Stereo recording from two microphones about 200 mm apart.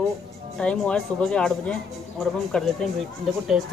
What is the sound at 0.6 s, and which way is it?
Speech, 5° left (ahead or behind).